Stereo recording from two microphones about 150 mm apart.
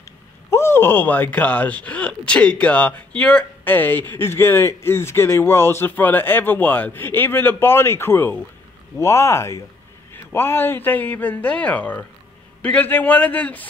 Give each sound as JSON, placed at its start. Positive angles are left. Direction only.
{"t": 0.5, "sound": "speech", "side_deg": 15}